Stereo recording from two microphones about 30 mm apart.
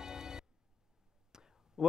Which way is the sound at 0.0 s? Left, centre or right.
Right.